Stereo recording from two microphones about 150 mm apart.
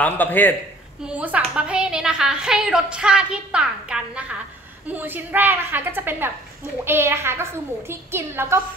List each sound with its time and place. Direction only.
0.0 s a man's voice: 10° left (ahead or behind)
1.0 s a woman's voice: 10° right (ahead or behind)